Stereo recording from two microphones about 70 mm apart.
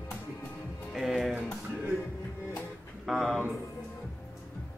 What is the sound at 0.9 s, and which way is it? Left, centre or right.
Speech, centre.